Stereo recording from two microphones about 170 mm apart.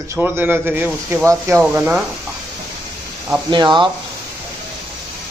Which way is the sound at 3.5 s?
25° right (ahead or behind).